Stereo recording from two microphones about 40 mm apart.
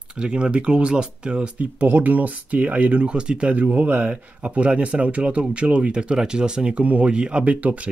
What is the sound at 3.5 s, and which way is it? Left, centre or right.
Speech, right.